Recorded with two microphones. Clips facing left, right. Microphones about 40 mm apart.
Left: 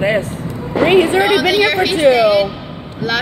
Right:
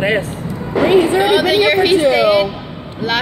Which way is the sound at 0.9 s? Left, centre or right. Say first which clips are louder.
Even; left.